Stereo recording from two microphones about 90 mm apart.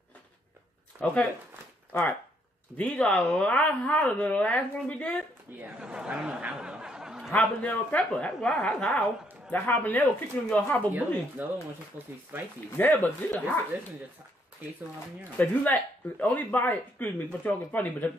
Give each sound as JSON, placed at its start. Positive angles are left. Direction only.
{"t": 1.0, "sound": "speech", "side_deg": 10}
{"t": 5.8, "sound": "speech", "side_deg": -10}
{"t": 7.3, "sound": "speech", "side_deg": 15}
{"t": 11.4, "sound": "speech", "side_deg": -20}
{"t": 12.7, "sound": "speech", "side_deg": 20}
{"t": 15.3, "sound": "speech", "side_deg": 20}